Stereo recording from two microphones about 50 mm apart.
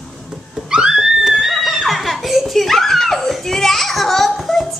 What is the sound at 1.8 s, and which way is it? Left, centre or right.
Giggle, centre.